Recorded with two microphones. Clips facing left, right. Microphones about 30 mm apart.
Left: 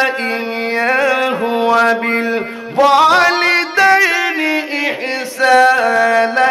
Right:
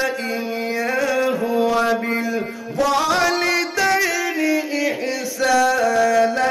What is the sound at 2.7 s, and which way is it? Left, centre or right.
Music, left.